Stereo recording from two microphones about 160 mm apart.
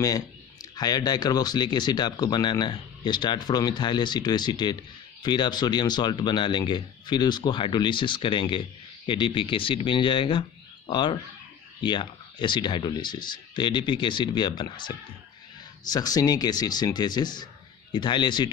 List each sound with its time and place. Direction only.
0.0 s speech: 20° left (ahead or behind)